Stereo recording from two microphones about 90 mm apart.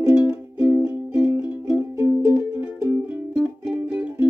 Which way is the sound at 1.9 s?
30° right (ahead or behind).